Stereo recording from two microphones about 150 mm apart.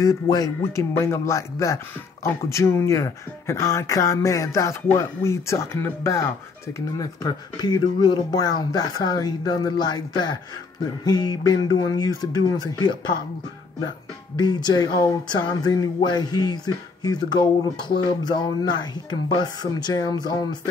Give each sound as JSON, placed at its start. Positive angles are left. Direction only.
{"t": 0.0, "sound": "speech", "side_deg": 25}
{"t": 14.3, "sound": "speech", "side_deg": 30}